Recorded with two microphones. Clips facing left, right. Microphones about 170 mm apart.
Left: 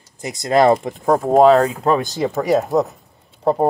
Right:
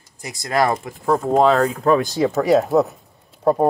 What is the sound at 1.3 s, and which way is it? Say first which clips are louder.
Speech: left 5 dB; 40° left (ahead or behind).